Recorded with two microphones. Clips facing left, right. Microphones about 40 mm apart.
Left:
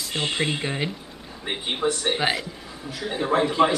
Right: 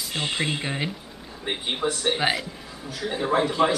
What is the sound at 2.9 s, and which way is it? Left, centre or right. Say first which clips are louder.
Speech: even; centre.